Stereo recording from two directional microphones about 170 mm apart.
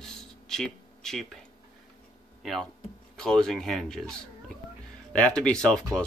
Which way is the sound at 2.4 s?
Centre (ahead or behind).